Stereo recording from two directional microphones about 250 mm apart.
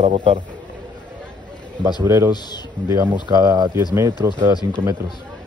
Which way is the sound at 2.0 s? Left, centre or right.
Centre.